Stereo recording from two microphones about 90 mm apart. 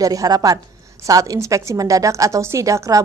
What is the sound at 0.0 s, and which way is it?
A woman's voice, 40° right (ahead or behind).